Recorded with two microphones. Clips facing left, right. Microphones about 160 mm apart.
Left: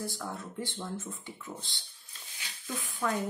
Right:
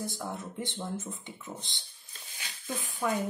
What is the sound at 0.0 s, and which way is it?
Speech, 20° right (ahead or behind).